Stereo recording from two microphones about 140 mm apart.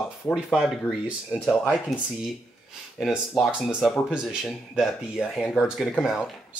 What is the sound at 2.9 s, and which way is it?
Speech, 5° right (ahead or behind).